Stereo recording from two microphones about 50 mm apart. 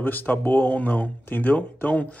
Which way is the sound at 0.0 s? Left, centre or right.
Left.